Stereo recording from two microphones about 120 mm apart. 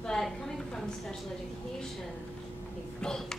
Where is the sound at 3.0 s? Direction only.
5° left (ahead or behind).